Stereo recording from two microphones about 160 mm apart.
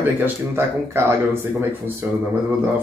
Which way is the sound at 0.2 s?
15° right (ahead or behind).